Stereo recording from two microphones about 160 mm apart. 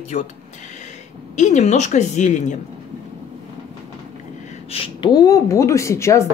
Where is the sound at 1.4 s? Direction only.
50° left (ahead or behind).